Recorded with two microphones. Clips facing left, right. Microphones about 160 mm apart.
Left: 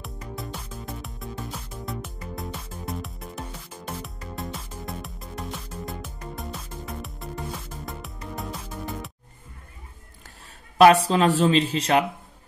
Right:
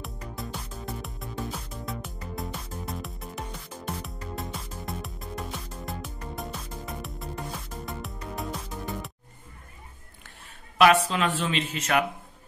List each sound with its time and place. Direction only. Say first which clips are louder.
0.0 s music: left 1 dB; centre (ahead or behind)
10.8 s speech: left 5 dB; 35° left (ahead or behind)